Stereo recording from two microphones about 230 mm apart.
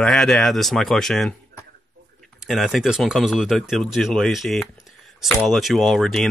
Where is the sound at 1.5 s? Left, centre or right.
Right.